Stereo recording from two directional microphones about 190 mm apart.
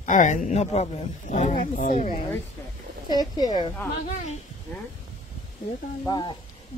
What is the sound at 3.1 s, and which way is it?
Speech, 20° left (ahead or behind).